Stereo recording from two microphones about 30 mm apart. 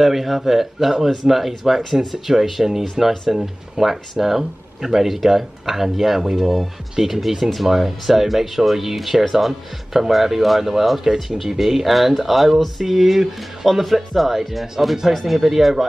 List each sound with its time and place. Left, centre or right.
0.0 s speech: centre
2.0 s speech: centre